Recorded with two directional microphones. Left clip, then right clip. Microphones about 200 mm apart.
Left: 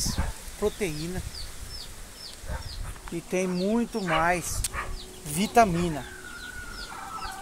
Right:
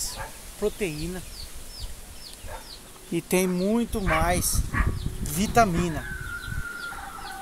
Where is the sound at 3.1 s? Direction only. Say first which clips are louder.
Right 4 dB; 50° right (ahead or behind).